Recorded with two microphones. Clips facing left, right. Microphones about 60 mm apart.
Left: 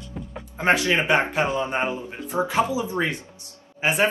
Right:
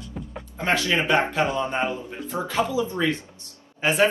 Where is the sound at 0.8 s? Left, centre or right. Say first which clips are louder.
Left 1 dB; left.